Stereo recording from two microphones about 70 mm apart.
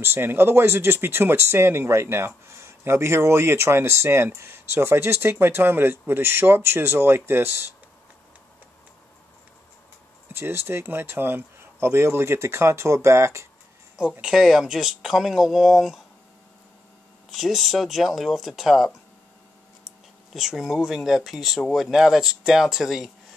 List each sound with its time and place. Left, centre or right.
0.0 s speech: right
10.3 s speech: right
14.2 s speech: centre
17.3 s speech: centre
20.3 s speech: centre